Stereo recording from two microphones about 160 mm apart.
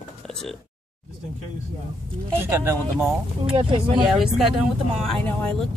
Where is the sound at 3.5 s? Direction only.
30° right (ahead or behind).